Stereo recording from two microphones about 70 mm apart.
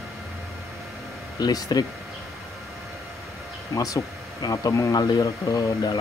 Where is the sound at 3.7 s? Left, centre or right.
Left.